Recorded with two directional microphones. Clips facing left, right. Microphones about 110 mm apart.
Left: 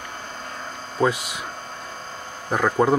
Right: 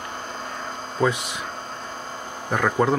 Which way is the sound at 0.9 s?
5° left (ahead or behind).